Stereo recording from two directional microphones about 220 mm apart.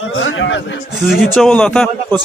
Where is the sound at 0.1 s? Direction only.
60° left (ahead or behind).